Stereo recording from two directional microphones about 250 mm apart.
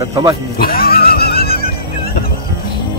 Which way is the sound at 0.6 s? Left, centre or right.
Left.